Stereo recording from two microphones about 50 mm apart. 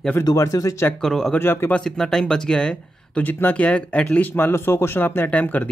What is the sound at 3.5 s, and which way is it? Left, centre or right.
Speech, left.